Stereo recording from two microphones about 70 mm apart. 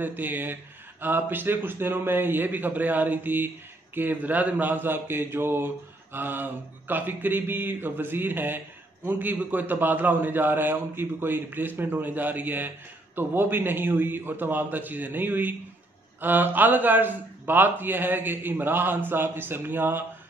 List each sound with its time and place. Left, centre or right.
0.0 s speech: right